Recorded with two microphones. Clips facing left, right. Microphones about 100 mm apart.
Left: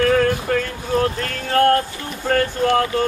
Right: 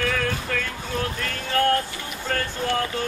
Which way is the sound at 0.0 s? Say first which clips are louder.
Left 9 dB; 40° left (ahead or behind).